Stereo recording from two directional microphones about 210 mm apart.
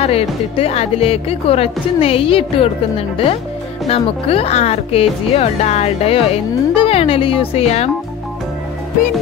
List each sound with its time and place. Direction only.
0.0 s a woman's voice: 30° left (ahead or behind)